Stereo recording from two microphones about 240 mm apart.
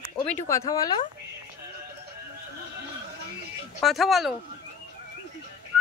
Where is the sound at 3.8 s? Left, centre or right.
Centre.